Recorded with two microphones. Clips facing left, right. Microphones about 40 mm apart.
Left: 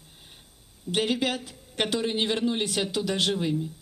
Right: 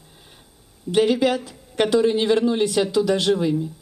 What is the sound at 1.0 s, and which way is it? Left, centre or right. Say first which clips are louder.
Speech: right 7 dB; left.